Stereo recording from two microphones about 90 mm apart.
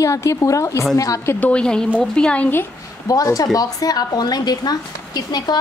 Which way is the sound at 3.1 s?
40° left (ahead or behind).